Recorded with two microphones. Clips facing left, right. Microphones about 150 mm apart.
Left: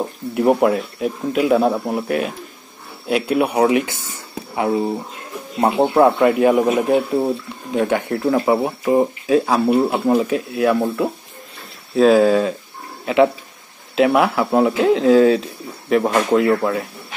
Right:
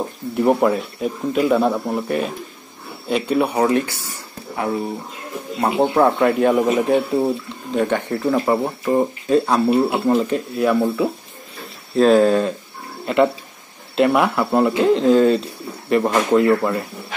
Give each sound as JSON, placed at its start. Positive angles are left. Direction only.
{"t": 0.0, "sound": "speech", "side_deg": 5}
{"t": 3.8, "sound": "speech", "side_deg": 20}
{"t": 5.8, "sound": "speech", "side_deg": 10}